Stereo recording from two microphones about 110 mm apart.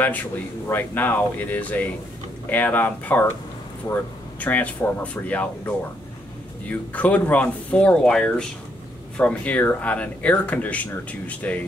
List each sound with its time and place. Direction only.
0.7 s speech: 20° left (ahead or behind)